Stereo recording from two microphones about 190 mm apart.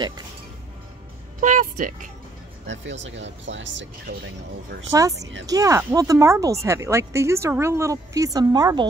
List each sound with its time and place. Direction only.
1.4 s a woman's voice: 45° right (ahead or behind)
2.6 s speech: 70° right (ahead or behind)
5.5 s speech: 15° right (ahead or behind)